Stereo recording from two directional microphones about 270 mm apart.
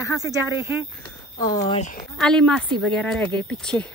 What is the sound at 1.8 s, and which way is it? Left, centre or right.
Speech, left.